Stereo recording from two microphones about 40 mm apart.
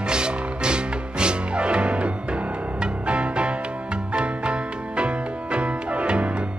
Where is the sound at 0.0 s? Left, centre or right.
Right.